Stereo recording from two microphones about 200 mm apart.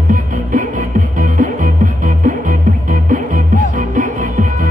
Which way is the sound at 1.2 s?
40° right (ahead or behind).